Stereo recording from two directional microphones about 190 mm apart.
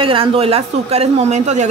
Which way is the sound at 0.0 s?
30° right (ahead or behind).